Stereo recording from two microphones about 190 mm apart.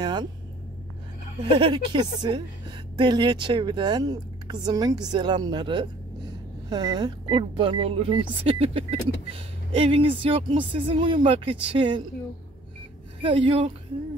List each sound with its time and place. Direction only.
0.0 s speech: 25° right (ahead or behind)
1.4 s speech: 25° right (ahead or behind)
13.2 s speech: 30° right (ahead or behind)